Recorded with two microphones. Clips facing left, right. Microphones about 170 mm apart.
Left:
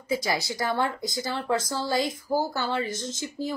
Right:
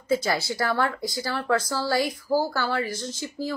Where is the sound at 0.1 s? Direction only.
15° left (ahead or behind).